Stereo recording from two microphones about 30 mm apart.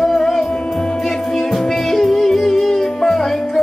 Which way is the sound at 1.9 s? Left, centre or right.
Centre.